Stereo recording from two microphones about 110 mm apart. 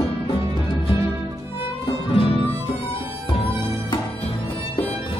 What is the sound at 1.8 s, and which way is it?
Music, 55° left (ahead or behind).